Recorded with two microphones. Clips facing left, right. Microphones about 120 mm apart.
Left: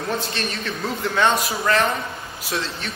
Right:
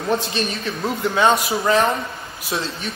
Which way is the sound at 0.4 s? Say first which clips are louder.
Right 3 dB; 15° right (ahead or behind).